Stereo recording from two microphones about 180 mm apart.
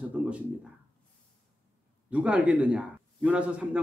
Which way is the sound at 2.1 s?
10° right (ahead or behind).